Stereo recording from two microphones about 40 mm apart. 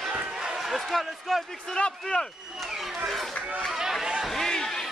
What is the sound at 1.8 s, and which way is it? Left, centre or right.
Speech, left.